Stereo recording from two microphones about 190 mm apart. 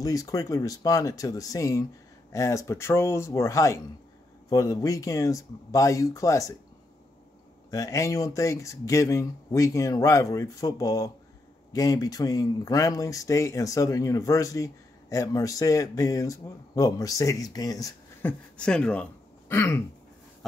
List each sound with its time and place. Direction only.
0.0 s speech: 20° left (ahead or behind)
7.7 s speech: 15° left (ahead or behind)
18.6 s speech: 5° left (ahead or behind)